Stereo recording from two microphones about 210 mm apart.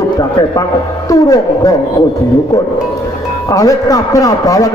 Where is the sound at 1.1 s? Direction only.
15° left (ahead or behind).